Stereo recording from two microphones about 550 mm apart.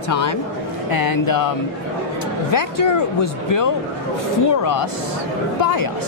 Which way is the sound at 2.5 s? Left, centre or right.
Left.